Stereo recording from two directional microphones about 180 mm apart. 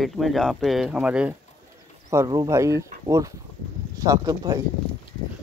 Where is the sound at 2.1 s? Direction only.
20° right (ahead or behind).